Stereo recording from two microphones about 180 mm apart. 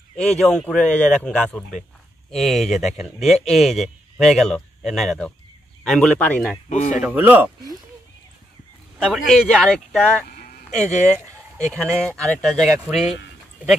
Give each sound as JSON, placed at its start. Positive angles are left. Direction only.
{"t": 0.1, "sound": "speech", "side_deg": 5}
{"t": 6.7, "sound": "speech", "side_deg": 45}
{"t": 7.0, "sound": "speech", "side_deg": -10}
{"t": 9.0, "sound": "speech", "side_deg": -5}
{"t": 10.3, "sound": "a sound", "side_deg": 40}
{"t": 11.6, "sound": "speech", "side_deg": 5}